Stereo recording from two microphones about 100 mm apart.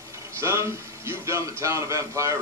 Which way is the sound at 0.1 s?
30° right (ahead or behind).